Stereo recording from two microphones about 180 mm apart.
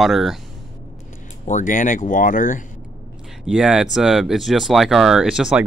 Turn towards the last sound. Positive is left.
turn(degrees=-5)  # may be behind; listen again after turning